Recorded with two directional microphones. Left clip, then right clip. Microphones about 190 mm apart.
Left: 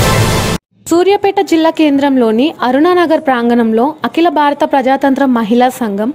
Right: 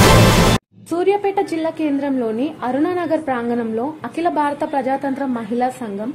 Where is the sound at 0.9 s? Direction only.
45° left (ahead or behind).